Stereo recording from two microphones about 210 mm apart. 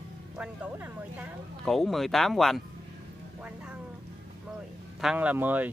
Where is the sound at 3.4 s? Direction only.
5° right (ahead or behind).